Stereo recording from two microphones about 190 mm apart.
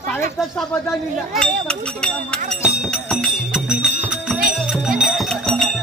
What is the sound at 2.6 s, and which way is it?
Music, centre (ahead or behind).